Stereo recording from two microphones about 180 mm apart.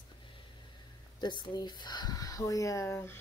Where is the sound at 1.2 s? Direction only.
25° left (ahead or behind).